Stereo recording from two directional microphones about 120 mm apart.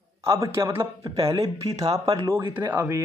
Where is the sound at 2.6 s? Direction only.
15° right (ahead or behind).